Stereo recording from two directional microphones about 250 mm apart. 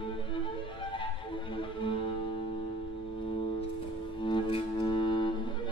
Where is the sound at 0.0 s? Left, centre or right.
Centre.